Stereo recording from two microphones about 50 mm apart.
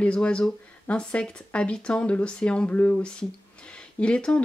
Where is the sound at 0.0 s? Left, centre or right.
Left.